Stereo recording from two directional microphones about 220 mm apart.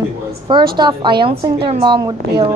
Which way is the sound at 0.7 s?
20° right (ahead or behind).